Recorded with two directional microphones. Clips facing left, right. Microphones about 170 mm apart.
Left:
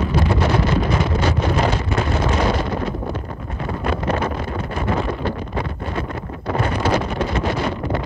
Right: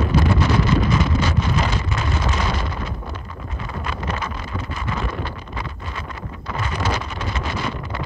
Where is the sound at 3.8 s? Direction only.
55° left (ahead or behind).